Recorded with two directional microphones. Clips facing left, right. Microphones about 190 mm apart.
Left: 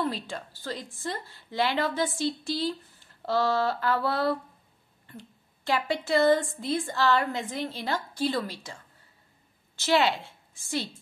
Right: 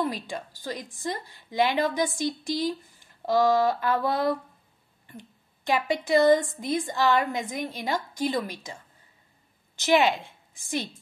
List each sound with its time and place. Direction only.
0.0 s a woman's voice: 15° right (ahead or behind)
9.8 s a woman's voice: 20° right (ahead or behind)